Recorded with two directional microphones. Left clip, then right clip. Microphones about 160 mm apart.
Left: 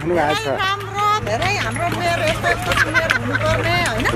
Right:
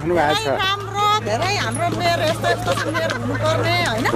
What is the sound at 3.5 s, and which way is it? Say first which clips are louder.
Speech: right 1 dB; 5° right (ahead or behind).